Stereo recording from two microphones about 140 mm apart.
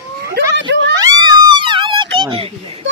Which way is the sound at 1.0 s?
30° right (ahead or behind).